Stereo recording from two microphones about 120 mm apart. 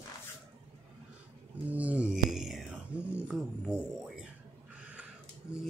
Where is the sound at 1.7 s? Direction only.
10° right (ahead or behind).